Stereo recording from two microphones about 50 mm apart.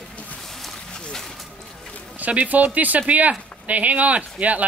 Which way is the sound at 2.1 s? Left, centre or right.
Right.